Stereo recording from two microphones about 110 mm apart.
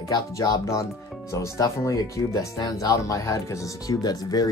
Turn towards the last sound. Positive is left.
turn(degrees=35)  # may be behind; listen again after turning